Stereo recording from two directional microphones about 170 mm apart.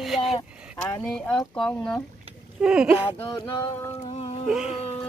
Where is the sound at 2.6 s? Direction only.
5° right (ahead or behind).